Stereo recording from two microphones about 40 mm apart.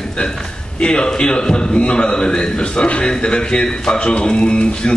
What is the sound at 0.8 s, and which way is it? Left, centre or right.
Speech, left.